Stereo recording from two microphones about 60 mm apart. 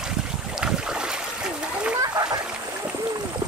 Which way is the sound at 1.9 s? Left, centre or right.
Right.